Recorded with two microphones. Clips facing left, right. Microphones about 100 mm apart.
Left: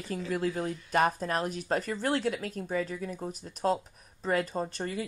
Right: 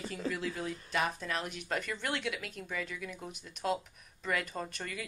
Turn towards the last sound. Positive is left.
turn(degrees=30)  # may be behind; listen again after turning